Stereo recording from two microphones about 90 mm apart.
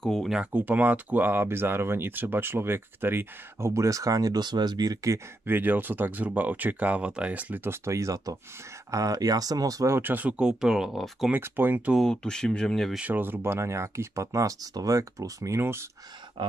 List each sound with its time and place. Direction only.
0.0 s speech: 5° left (ahead or behind)
0.3 s speech: 15° right (ahead or behind); by 5.2 s 40° right (ahead or behind)
5.5 s speech: 20° right (ahead or behind); by 9.9 s 40° right (ahead or behind)
9.9 s speech: 20° right (ahead or behind); by 11.2 s centre (ahead or behind)
11.3 s speech: 20° right (ahead or behind)
11.9 s speech: 5° left (ahead or behind)
13.1 s speech: 25° right (ahead or behind)
16.4 s a sound: 55° right (ahead or behind)